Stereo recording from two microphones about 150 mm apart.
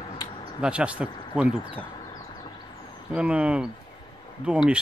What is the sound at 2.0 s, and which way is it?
Vehicle, 25° left (ahead or behind).